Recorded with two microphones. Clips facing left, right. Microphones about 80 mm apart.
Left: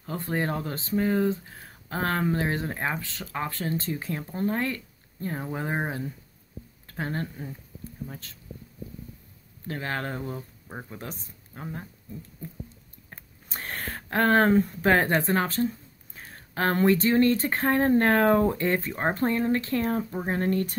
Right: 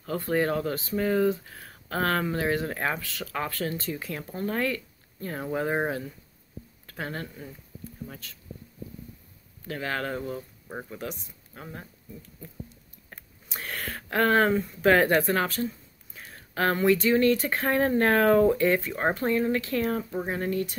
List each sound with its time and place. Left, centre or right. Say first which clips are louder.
0.0 s speech: right 3 dB; left
6.9 s a woman's voice: left 3 dB; left
9.7 s a woman's voice: right 1 dB; left
13.1 s a sound: even; left
14.9 s a woman's voice: right 3 dB; left
20.2 s speech: left 4 dB; left